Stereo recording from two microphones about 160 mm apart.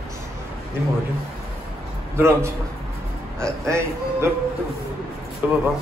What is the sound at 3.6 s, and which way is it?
Speech, 20° right (ahead or behind).